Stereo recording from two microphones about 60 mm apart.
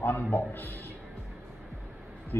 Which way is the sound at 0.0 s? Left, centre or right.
Left.